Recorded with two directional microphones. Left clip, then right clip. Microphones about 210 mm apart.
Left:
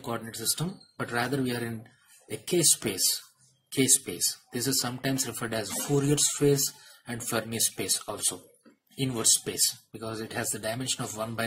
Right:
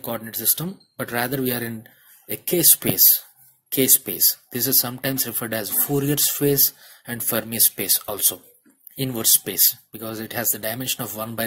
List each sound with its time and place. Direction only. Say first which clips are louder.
0.0 s speech: right 4 dB; 40° right (ahead or behind)